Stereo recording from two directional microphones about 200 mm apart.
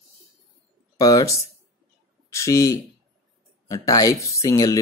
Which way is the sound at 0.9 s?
20° left (ahead or behind).